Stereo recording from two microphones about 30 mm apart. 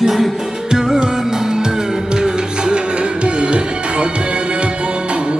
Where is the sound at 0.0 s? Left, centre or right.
Centre.